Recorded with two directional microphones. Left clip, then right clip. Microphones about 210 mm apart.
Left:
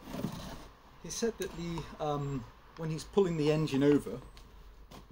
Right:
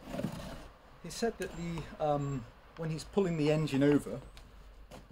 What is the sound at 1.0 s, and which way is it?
Speech, 15° right (ahead or behind).